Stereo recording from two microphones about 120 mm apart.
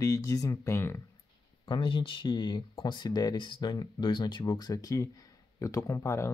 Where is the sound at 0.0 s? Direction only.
25° left (ahead or behind).